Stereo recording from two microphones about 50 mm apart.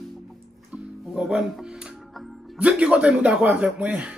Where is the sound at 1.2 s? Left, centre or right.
Centre.